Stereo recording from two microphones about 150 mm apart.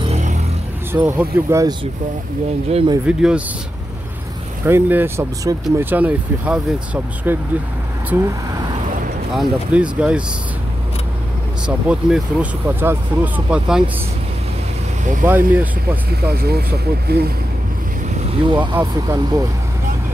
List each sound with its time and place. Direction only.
0.0 s a sound: 45° right (ahead or behind)
0.9 s speech: 15° right (ahead or behind)
3.1 s speech: 5° right (ahead or behind)
4.6 s speech: 15° right (ahead or behind)
9.3 s speech: 5° right (ahead or behind)
11.6 s speech: 5° right (ahead or behind)
15.2 s speech: 10° right (ahead or behind)
16.3 s speech: 90° right
18.2 s speech: 35° right (ahead or behind)
18.8 s speech: 20° right (ahead or behind)